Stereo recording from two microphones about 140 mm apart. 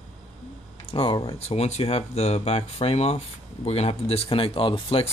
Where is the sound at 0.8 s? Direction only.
40° left (ahead or behind).